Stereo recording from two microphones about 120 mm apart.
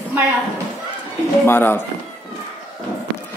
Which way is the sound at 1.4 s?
20° left (ahead or behind).